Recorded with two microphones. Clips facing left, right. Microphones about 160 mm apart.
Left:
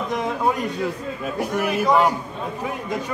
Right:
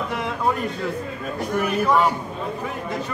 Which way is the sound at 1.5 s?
5° left (ahead or behind).